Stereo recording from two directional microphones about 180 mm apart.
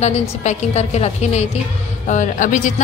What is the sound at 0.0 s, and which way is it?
A woman's voice, 40° left (ahead or behind).